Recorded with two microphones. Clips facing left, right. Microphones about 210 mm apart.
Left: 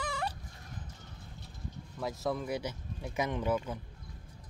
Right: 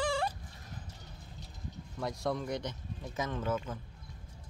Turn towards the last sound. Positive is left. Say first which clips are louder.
# left 3 dB
turn(degrees=15)  # may be behind; listen again after turning